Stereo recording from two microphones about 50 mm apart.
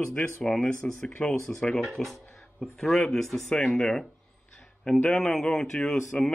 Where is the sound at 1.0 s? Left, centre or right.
Left.